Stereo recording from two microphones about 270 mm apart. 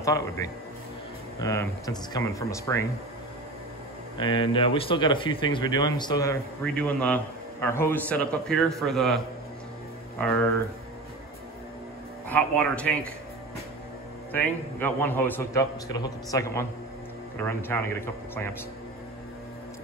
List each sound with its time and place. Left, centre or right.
0.0 s speech: centre
4.2 s a man's voice: centre
12.3 s a man's voice: centre
14.3 s speech: centre